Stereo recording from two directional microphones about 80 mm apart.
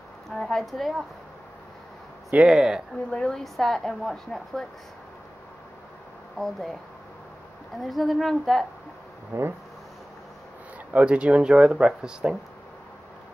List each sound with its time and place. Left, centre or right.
0.3 s speech: centre
2.3 s speech: centre
3.1 s speech: centre
6.3 s speech: centre
7.8 s speech: centre
9.3 s speech: right
10.9 s speech: centre